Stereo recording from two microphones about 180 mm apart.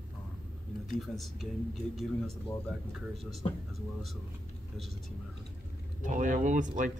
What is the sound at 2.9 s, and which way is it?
Speech, centre (ahead or behind).